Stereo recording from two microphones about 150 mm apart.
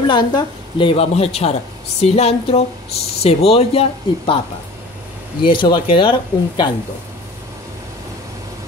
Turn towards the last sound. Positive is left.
turn(degrees=30)  # may be behind; listen again after turning